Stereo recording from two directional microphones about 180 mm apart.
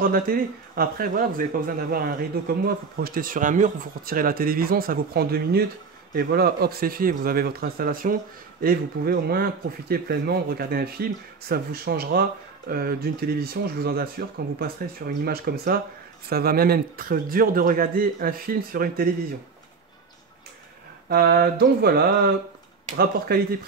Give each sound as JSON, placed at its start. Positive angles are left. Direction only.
{"t": 0.0, "sound": "a man's voice", "side_deg": -55}
{"t": 15.2, "sound": "a man's voice", "side_deg": -60}
{"t": 21.1, "sound": "speech", "side_deg": -60}